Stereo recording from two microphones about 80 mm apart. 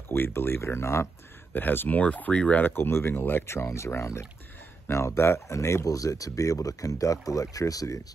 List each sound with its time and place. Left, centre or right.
0.1 s speech: left
2.7 s speech: left